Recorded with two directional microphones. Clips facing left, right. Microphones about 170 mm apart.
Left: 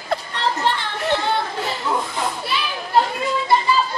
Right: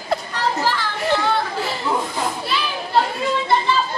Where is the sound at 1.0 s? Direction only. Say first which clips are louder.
Right 1 dB; centre (ahead or behind).